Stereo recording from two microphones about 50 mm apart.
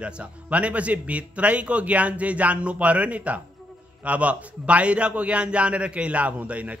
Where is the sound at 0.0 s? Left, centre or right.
Right.